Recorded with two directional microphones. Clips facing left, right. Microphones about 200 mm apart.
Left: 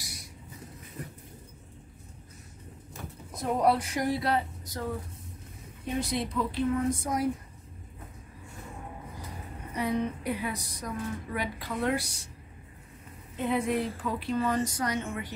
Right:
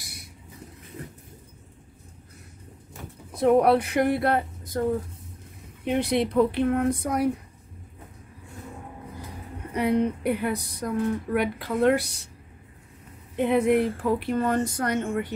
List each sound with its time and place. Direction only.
0.0 s vehicle: 60° right (ahead or behind)
3.3 s speech: 65° right (ahead or behind)
5.9 s a woman's voice: 65° right (ahead or behind)
9.8 s a woman's voice: 60° right (ahead or behind)
13.4 s a woman's voice: 65° right (ahead or behind)